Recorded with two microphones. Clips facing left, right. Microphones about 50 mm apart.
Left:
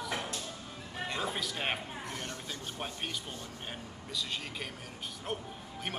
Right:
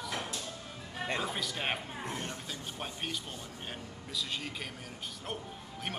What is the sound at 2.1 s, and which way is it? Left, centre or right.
Speech, centre.